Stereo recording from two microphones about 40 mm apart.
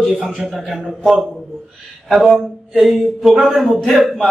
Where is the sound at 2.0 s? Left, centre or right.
Centre.